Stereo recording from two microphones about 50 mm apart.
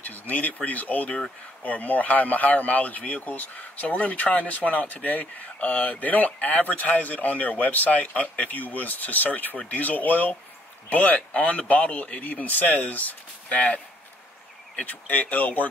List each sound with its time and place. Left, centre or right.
0.0 s speech: left
14.8 s speech: left